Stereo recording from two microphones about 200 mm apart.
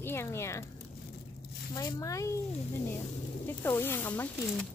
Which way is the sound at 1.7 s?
20° left (ahead or behind).